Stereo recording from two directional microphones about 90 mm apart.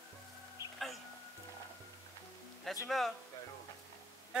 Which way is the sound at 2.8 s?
Centre (ahead or behind).